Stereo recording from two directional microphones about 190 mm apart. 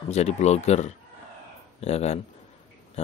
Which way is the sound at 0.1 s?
35° left (ahead or behind).